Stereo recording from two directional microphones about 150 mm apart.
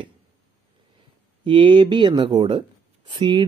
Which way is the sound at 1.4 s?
35° right (ahead or behind).